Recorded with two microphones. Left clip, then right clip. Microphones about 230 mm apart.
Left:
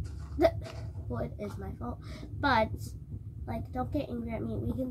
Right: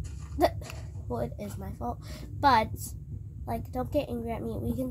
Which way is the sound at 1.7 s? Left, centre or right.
Right.